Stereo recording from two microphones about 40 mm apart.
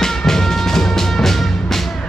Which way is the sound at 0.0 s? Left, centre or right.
Centre.